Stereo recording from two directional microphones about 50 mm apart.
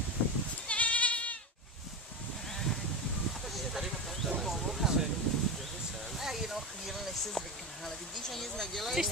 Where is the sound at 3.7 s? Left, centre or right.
Centre.